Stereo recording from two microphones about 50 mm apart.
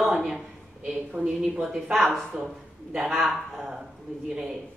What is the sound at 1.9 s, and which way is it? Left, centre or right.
Speech, centre.